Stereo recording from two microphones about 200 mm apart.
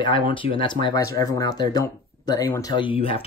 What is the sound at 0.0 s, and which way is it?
Speech, 25° left (ahead or behind).